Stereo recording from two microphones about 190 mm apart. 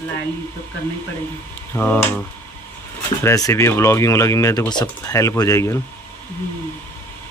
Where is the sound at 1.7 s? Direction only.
10° left (ahead or behind).